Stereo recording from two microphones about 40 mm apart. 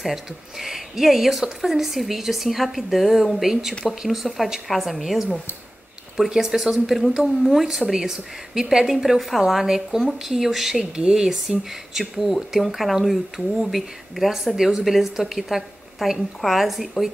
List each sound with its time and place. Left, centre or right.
0.0 s a woman's voice: centre
7.4 s a woman's voice: centre
10.8 s a woman's voice: centre
11.9 s a woman's voice: centre